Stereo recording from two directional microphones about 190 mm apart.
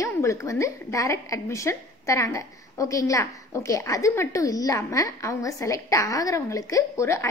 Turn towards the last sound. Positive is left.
turn(degrees=15)  # may be behind; listen again after turning